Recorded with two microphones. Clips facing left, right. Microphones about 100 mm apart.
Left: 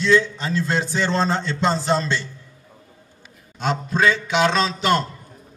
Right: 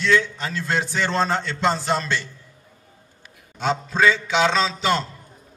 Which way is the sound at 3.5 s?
15° left (ahead or behind).